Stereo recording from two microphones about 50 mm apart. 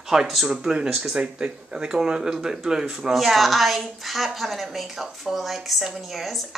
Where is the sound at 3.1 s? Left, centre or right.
Centre.